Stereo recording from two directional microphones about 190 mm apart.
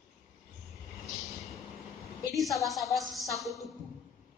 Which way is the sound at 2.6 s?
Centre (ahead or behind).